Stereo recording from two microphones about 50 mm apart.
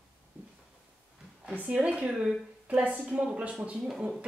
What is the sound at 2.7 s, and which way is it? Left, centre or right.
Speech, right.